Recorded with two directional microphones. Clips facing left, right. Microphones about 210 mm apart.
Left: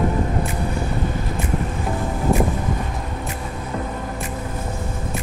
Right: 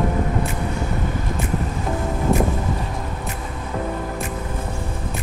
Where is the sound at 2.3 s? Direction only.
Centre (ahead or behind).